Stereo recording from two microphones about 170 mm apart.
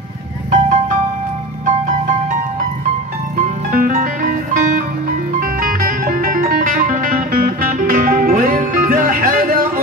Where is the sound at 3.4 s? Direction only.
55° right (ahead or behind).